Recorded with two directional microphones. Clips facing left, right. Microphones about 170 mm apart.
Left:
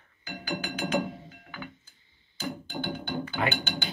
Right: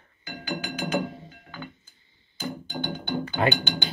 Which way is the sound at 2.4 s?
5° left (ahead or behind).